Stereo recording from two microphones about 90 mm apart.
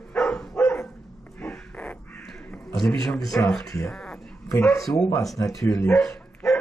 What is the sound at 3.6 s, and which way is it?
Speech, 35° left (ahead or behind).